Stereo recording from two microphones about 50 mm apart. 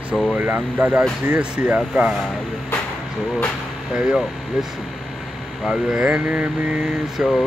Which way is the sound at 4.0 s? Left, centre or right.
Centre.